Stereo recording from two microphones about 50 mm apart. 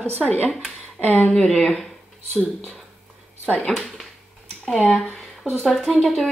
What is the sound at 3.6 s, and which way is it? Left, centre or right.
Speech, centre.